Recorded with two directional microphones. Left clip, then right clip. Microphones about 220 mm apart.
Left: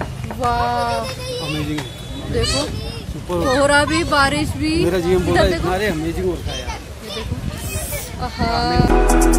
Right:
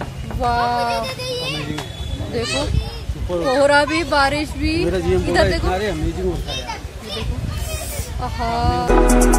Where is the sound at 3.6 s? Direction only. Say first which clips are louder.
Right 1 dB; centre (ahead or behind).